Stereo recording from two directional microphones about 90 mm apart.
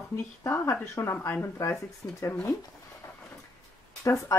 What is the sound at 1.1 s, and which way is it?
Speech, 20° left (ahead or behind).